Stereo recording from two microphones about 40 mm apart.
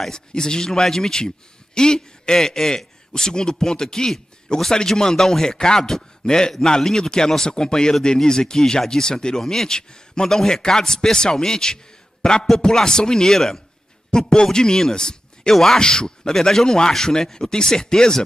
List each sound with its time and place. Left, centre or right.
0.1 s a man's voice: centre
15.8 s a man's voice: centre